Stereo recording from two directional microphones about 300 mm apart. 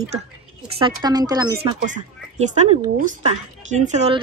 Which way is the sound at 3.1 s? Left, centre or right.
Right.